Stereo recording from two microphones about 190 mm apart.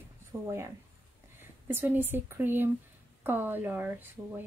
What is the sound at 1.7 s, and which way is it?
Speech, 10° right (ahead or behind).